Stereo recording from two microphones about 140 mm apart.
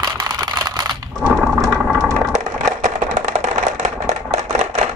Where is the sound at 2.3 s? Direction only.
60° right (ahead or behind).